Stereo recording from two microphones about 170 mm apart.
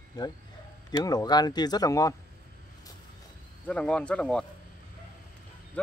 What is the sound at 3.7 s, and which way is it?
Speech, 5° left (ahead or behind).